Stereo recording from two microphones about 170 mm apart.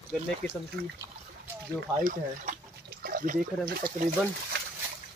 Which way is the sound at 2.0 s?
50° right (ahead or behind).